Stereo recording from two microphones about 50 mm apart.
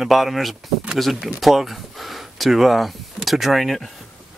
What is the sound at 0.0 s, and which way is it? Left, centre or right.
Speech, centre.